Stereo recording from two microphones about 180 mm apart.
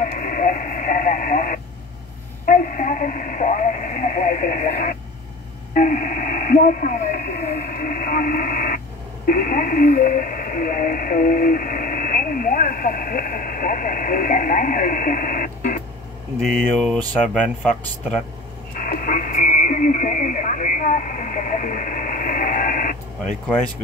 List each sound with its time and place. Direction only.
0.0 s radio: 50° left (ahead or behind)
2.4 s speech: 50° left (ahead or behind)
16.3 s speech: centre (ahead or behind)
18.8 s radio: 50° left (ahead or behind)